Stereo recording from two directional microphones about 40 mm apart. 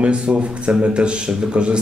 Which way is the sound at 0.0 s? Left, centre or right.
Right.